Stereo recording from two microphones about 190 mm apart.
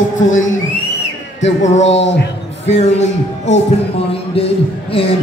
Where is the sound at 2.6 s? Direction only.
35° left (ahead or behind).